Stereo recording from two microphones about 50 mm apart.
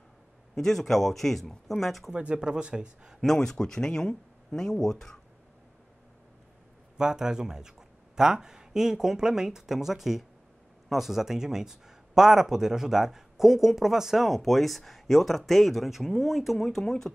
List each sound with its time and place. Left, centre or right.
0.6 s speech: centre
2.1 s speech: centre
3.2 s speech: centre
7.0 s speech: centre